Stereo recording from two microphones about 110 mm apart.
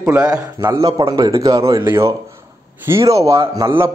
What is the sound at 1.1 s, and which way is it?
A man's voice, 35° right (ahead or behind).